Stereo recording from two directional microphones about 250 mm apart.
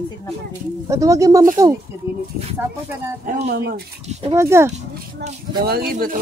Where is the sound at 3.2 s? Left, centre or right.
Right.